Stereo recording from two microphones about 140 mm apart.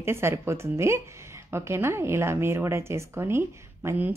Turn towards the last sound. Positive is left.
turn(degrees=-10)  # may be behind; listen again after turning